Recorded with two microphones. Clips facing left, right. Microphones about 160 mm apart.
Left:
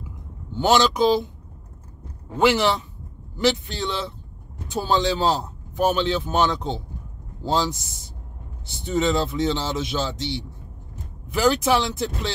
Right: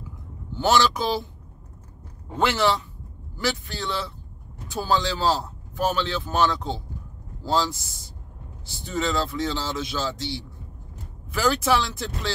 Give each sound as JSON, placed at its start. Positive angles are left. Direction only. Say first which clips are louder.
{"t": 0.6, "sound": "speech", "louder": "left 3 dB", "side_deg": 20}
{"t": 2.3, "sound": "speech", "louder": "left 3 dB", "side_deg": 15}